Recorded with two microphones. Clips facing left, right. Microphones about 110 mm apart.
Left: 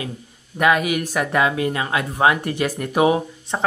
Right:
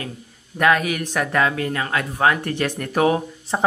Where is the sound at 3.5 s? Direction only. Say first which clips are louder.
Right 2 dB; 5° right (ahead or behind).